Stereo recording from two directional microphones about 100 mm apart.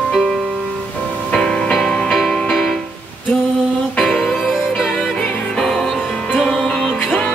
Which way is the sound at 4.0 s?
5° left (ahead or behind).